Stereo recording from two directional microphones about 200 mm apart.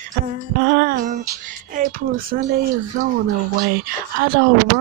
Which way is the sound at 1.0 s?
40° right (ahead or behind).